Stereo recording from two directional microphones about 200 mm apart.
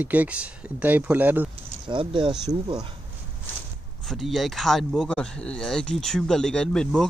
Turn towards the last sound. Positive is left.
turn(degrees=5)  # may be behind; listen again after turning